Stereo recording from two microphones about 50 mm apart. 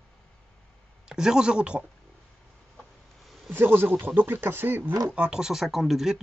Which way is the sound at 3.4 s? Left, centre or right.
Right.